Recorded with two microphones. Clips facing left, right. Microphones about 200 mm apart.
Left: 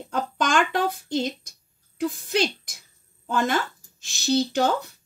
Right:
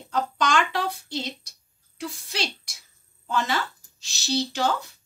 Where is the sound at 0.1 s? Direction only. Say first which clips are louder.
Even; 50° left (ahead or behind).